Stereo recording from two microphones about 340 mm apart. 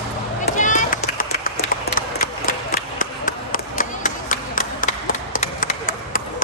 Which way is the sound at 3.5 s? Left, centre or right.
Left.